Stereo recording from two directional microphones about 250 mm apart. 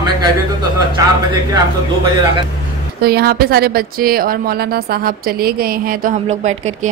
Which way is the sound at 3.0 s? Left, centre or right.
Right.